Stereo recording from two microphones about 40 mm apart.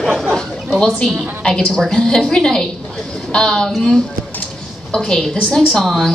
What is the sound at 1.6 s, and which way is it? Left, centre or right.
A woman's voice, centre.